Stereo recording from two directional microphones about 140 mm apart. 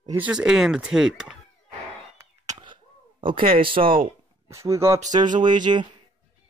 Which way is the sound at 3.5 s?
40° right (ahead or behind).